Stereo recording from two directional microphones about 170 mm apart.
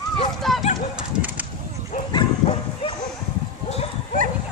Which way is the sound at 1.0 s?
10° right (ahead or behind).